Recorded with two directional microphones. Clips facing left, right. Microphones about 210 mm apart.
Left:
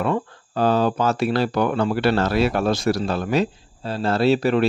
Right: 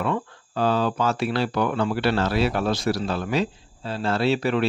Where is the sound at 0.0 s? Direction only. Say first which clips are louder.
Left 3 dB; 45° left (ahead or behind).